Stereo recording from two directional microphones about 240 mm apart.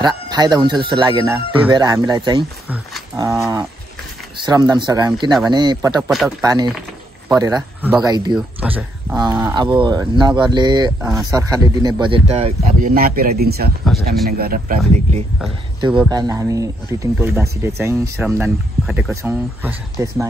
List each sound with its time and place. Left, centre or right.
0.0 s speech: centre
6.0 s speech: centre
6.4 s speech: centre
11.0 s speech: centre
11.2 s speech: centre; by 13.7 s right
13.9 s speech: centre
14.4 s speech: right
16.1 s speech: centre